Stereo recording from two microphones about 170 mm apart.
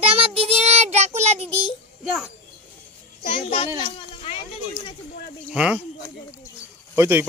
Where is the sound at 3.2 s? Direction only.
35° left (ahead or behind).